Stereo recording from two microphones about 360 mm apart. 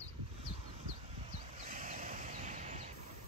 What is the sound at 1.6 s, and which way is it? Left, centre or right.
Vehicle, right.